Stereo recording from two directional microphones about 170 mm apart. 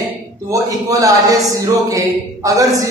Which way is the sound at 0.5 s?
20° right (ahead or behind).